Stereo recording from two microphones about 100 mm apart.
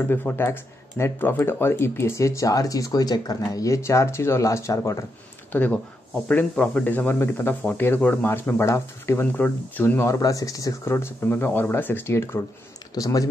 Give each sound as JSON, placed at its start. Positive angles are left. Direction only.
{"t": 0.0, "sound": "speech", "side_deg": 20}
{"t": 5.5, "sound": "speech", "side_deg": 15}
{"t": 12.9, "sound": "speech", "side_deg": 35}